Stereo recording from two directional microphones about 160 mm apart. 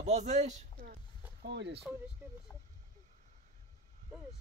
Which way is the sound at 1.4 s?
90° right.